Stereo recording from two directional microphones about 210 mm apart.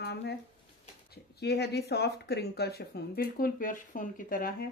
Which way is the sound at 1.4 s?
50° left (ahead or behind).